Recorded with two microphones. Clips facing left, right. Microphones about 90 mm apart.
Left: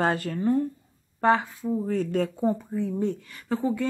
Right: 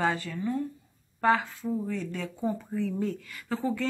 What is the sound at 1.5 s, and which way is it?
Speech, 15° left (ahead or behind).